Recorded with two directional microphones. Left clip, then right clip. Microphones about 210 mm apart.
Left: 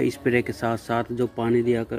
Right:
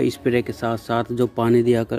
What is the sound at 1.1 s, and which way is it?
Speech, 20° right (ahead or behind).